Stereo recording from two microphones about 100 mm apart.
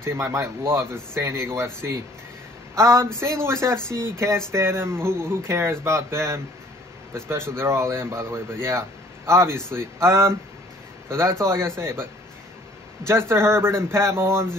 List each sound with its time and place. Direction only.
0.0 s speech: 25° right (ahead or behind)
13.3 s speech: 25° right (ahead or behind)